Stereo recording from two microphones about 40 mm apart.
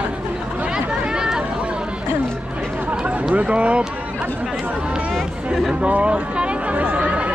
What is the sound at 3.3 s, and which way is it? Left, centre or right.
Speech, right.